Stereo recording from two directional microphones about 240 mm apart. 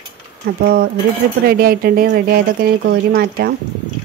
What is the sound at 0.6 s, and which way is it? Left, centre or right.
Speech, right.